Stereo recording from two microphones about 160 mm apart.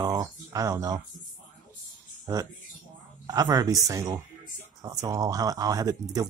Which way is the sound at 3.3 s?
25° right (ahead or behind).